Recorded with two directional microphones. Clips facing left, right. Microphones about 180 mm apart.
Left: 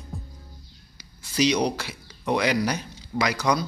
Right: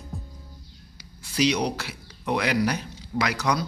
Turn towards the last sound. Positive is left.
turn(degrees=0)  # may be behind; listen again after turning